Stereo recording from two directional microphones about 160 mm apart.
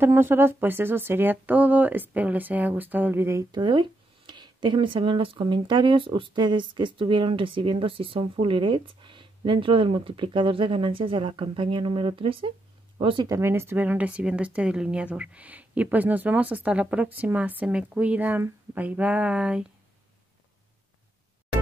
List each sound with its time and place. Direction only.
0.0 s speech: 15° right (ahead or behind); by 13.4 s 30° right (ahead or behind)
13.4 s speech: 15° right (ahead or behind)